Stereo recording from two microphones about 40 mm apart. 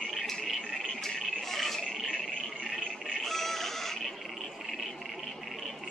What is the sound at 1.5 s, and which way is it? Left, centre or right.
Frog, centre.